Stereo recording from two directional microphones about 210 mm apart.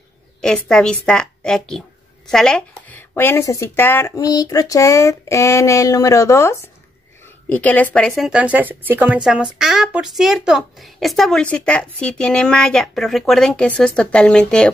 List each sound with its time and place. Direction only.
0.4 s speech: 5° left (ahead or behind)